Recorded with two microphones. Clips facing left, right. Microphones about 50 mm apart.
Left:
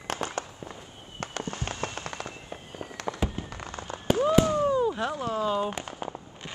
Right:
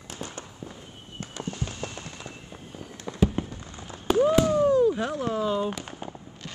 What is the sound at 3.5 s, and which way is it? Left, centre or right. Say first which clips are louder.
Fireworks: left 4 dB; left.